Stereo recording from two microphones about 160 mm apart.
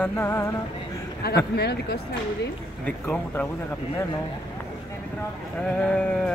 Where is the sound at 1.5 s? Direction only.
90° left.